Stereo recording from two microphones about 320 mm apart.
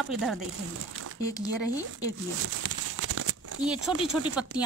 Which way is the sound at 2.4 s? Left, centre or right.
Right.